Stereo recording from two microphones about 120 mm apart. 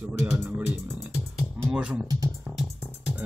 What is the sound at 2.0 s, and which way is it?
Speech, 30° right (ahead or behind).